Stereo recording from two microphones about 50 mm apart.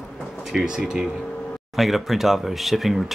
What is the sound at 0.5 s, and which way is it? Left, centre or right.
Speech, centre.